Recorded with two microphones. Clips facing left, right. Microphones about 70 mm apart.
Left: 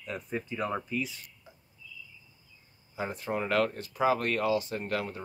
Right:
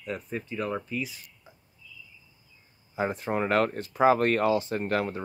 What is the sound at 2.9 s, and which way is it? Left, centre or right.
Speech, right.